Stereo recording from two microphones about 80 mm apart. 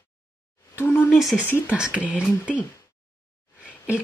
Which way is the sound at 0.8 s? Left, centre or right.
Left.